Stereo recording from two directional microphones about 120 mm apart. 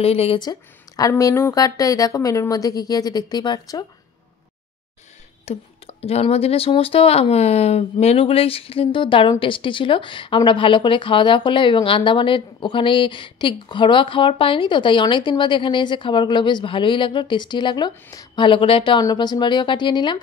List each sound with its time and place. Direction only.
0.0 s speech: 55° left (ahead or behind)
0.4 s a woman's voice: 35° left (ahead or behind)
5.4 s a woman's voice: 60° left (ahead or behind); by 20.2 s 40° left (ahead or behind)